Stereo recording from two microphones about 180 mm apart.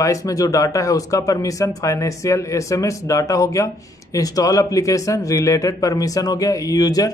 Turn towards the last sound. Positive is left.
turn(degrees=20)  # may be behind; listen again after turning